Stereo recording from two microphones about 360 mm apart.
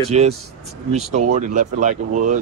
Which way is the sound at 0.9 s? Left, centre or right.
Centre.